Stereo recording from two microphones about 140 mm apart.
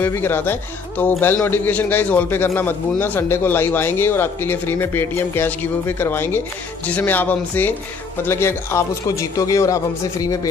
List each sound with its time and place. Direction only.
0.0 s speech: 15° left (ahead or behind)